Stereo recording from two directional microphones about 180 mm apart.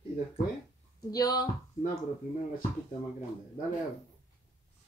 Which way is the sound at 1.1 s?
20° left (ahead or behind).